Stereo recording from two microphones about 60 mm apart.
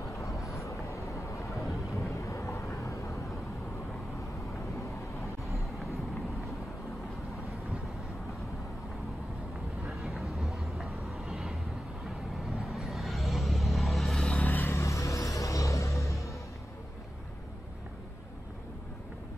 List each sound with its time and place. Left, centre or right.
0.1 s vehicle: left
1.6 s vehicle: centre
2.0 s vehicle: left
9.8 s vehicle: centre
14.4 s vehicle: left
14.7 s music: left